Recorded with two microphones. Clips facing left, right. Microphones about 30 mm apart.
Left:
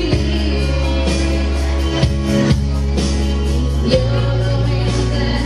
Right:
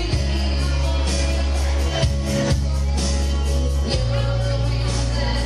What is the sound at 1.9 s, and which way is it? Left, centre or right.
Music, left.